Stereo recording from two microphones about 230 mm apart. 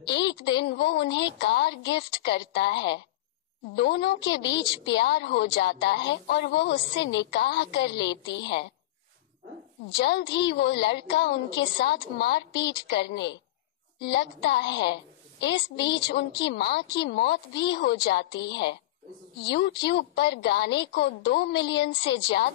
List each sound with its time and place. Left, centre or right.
0.1 s a woman's voice: left
9.8 s a woman's voice: left